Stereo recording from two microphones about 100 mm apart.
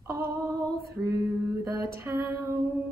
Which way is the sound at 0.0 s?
35° right (ahead or behind).